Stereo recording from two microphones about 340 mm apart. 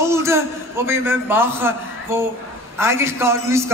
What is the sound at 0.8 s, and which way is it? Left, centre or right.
Speech, centre.